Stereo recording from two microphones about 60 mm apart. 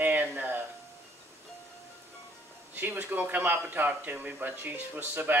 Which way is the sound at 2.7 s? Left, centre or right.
Right.